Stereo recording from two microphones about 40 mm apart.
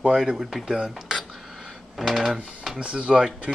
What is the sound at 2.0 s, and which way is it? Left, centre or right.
Speech, centre.